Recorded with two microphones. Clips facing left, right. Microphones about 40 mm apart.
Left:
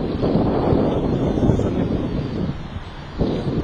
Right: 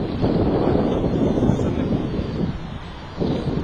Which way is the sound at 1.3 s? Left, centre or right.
Right.